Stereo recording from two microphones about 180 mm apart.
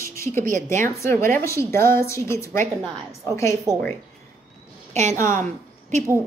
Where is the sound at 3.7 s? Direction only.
5° left (ahead or behind).